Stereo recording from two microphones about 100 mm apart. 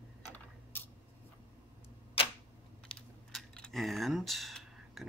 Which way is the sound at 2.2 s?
70° left (ahead or behind).